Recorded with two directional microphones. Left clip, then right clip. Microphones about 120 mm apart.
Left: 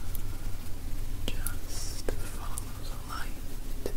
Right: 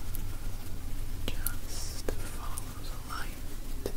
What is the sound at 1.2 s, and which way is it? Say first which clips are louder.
Whispering: left 1 dB; centre (ahead or behind).